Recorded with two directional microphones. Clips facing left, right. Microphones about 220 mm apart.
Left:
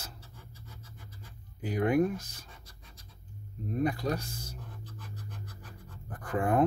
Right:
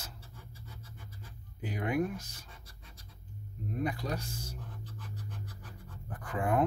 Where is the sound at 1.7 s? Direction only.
40° left (ahead or behind).